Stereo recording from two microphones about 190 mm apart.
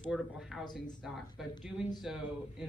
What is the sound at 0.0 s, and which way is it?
A woman's voice, centre (ahead or behind).